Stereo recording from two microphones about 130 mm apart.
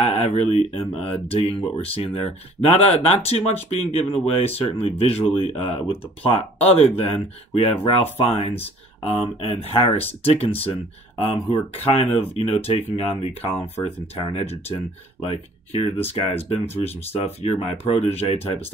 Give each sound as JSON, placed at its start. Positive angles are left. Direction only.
{"t": 0.0, "sound": "speech", "side_deg": 55}